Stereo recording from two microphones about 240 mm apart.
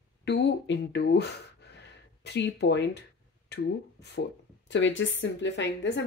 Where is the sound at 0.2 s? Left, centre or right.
Left.